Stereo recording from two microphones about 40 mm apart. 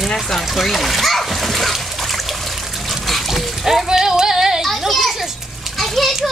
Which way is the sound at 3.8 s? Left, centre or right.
Centre.